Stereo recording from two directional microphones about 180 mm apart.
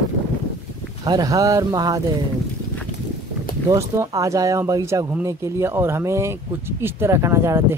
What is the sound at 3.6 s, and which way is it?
Speech, 15° right (ahead or behind).